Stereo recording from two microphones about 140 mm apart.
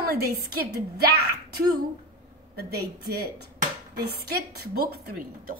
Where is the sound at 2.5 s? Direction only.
90° right.